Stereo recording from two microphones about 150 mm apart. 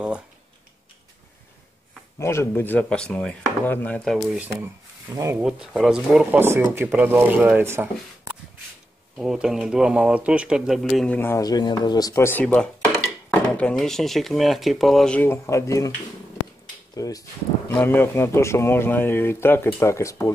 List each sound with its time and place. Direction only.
2.1 s speech: 20° left (ahead or behind)
4.3 s speech: 10° right (ahead or behind)
5.4 s speech: 5° right (ahead or behind)
6.4 s speech: 15° right (ahead or behind)
9.1 s speech: 5° right (ahead or behind)
11.1 s speech: 15° left (ahead or behind)
11.4 s speech: 25° left (ahead or behind)
16.9 s speech: 25° left (ahead or behind)
17.6 s speech: 15° left (ahead or behind)